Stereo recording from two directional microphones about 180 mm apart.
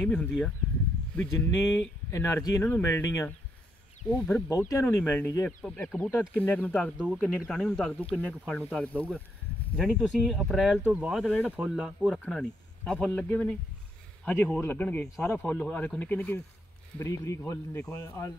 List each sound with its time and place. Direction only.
0.0 s speech: 5° left (ahead or behind)
12.2 s speech: 5° left (ahead or behind)